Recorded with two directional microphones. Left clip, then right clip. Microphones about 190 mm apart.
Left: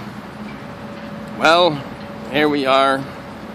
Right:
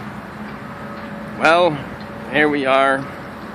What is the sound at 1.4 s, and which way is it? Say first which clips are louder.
Speech: left 1 dB; 20° left (ahead or behind).